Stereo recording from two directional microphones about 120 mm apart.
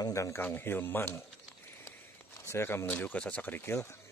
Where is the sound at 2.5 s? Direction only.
20° left (ahead or behind).